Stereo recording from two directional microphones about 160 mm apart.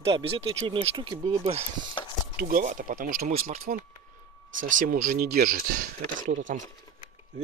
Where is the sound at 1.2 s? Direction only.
45° right (ahead or behind).